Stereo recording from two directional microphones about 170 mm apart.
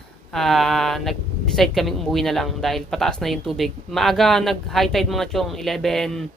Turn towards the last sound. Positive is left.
turn(degrees=0)  # may be behind; listen again after turning